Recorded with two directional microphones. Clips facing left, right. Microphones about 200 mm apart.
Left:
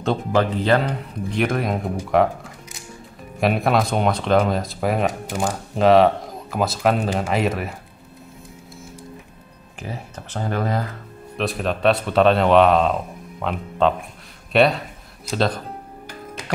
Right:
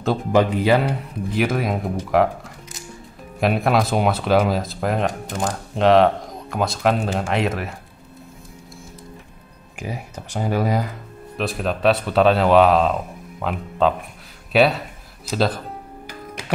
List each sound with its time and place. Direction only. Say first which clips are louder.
0.3 s speech: right 2 dB; 15° right (ahead or behind)
9.8 s speech: right 2 dB; 10° right (ahead or behind)